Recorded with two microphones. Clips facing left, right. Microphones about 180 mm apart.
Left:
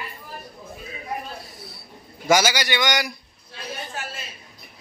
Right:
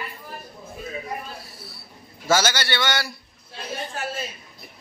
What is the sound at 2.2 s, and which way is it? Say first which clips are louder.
Speech: left 2 dB; 15° left (ahead or behind).